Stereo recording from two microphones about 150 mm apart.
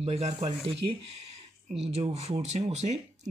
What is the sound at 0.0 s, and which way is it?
Speech, 45° right (ahead or behind).